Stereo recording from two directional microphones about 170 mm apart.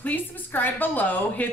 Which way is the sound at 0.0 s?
10° left (ahead or behind).